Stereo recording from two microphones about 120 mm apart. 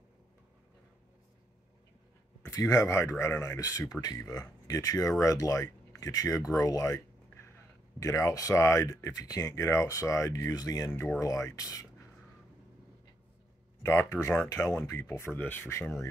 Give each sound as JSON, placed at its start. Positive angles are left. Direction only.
{"t": 2.4, "sound": "speech", "side_deg": 25}
{"t": 13.8, "sound": "speech", "side_deg": 20}